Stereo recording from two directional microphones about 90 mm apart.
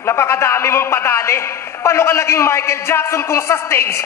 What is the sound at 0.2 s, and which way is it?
A man's voice, 30° left (ahead or behind).